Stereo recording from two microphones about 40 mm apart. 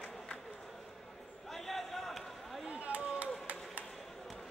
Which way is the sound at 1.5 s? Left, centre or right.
Centre.